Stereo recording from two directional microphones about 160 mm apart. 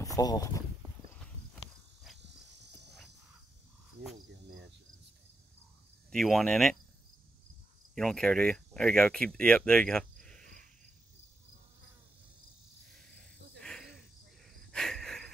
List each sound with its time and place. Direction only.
0.0 s speech: 20° left (ahead or behind)
6.0 s speech: centre (ahead or behind)
7.9 s speech: 5° left (ahead or behind)
12.9 s cricket: 5° left (ahead or behind)